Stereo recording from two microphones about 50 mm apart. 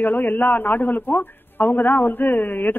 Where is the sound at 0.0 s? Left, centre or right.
Left.